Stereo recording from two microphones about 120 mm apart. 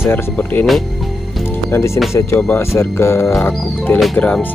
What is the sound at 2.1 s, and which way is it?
Speech, 25° left (ahead or behind).